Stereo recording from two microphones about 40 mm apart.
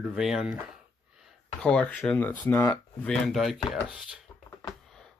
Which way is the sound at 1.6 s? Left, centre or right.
Left.